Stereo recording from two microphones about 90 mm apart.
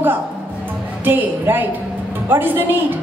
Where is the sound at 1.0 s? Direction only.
20° right (ahead or behind).